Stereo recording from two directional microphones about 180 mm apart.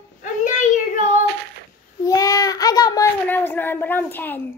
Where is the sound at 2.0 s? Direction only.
20° left (ahead or behind).